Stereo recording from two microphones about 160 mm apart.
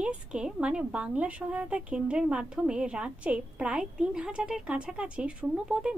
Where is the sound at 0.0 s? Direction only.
5° right (ahead or behind).